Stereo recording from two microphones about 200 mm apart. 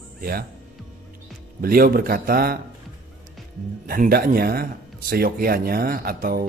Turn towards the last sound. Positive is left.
turn(degrees=-50)  # may be behind; listen again after turning